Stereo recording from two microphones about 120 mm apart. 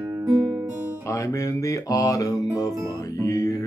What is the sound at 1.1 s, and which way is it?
Mantra, 25° left (ahead or behind).